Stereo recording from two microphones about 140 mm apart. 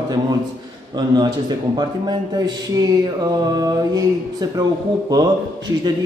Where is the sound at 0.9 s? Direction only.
30° right (ahead or behind).